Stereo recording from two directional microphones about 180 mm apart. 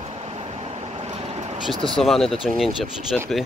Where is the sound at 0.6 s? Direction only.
35° right (ahead or behind).